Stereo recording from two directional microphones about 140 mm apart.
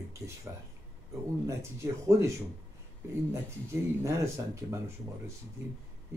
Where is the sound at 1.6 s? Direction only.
20° right (ahead or behind).